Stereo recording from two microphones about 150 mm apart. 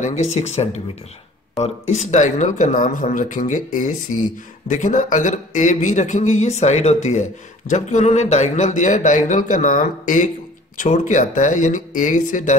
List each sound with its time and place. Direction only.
0.0 s a man's voice: 50° left (ahead or behind)